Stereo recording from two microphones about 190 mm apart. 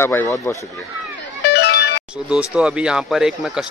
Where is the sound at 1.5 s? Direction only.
60° left (ahead or behind).